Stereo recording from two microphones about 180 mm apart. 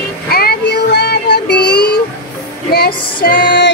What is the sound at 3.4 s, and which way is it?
Music, 70° left (ahead or behind).